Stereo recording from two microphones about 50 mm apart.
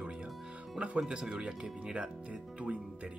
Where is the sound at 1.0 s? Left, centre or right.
Centre.